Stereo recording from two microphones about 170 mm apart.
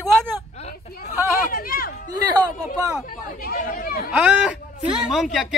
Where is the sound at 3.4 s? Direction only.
55° left (ahead or behind).